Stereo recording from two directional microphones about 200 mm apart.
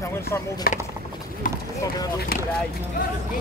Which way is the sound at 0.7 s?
50° left (ahead or behind).